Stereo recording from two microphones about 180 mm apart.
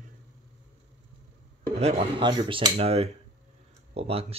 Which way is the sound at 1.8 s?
35° right (ahead or behind).